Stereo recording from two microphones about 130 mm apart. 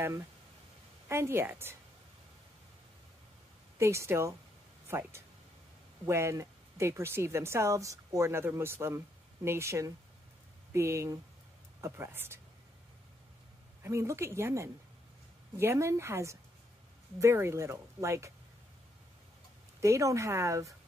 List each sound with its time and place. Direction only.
1.0 s a woman's voice: 20° right (ahead or behind)
3.7 s speech: 20° right (ahead or behind)
13.8 s speech: 20° right (ahead or behind)
19.8 s speech: 25° right (ahead or behind)